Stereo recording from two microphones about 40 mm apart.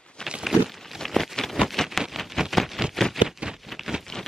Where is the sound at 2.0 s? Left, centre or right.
Centre.